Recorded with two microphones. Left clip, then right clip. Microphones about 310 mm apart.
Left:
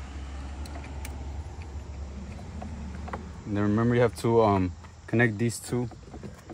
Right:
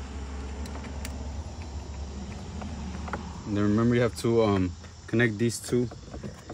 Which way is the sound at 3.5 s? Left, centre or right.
Centre.